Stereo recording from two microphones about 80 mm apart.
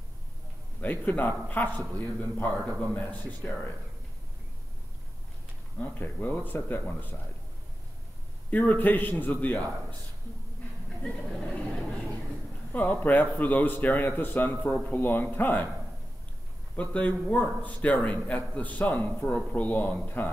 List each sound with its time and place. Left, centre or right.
0.7 s a man's voice: left
5.8 s a man's voice: left
8.5 s a man's voice: left
11.0 s a sound: centre
12.7 s a man's voice: left
16.9 s a man's voice: centre